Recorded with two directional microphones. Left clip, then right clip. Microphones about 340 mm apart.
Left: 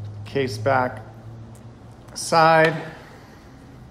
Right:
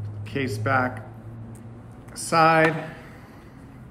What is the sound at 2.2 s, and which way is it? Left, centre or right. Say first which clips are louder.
Speech: left 3 dB; centre.